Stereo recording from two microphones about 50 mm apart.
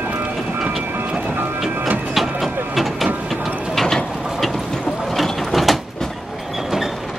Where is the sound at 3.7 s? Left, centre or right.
Centre.